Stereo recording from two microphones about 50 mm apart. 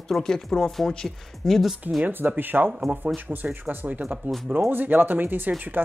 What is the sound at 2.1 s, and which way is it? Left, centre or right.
Speech, right.